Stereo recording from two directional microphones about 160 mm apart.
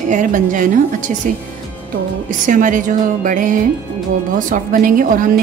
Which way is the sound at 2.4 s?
55° right (ahead or behind).